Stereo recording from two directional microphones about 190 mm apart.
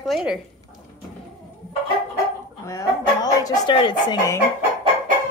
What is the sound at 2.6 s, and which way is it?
Speech, 15° left (ahead or behind).